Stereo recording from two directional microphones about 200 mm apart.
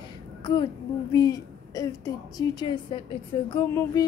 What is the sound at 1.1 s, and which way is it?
A woman's voice, 20° left (ahead or behind).